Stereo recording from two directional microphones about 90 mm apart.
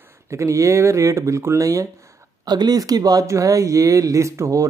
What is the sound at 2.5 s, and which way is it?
A man's voice, 45° right (ahead or behind).